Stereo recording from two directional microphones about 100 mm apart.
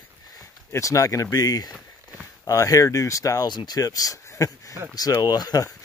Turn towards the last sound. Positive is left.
turn(degrees=40)  # may be behind; listen again after turning